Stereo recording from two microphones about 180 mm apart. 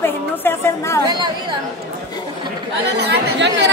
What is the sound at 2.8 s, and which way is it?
Speech, 70° right (ahead or behind).